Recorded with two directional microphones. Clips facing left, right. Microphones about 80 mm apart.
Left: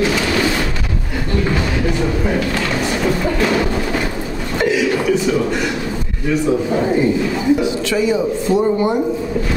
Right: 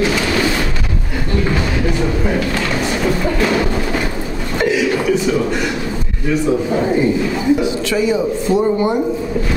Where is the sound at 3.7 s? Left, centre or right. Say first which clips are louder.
Even; centre.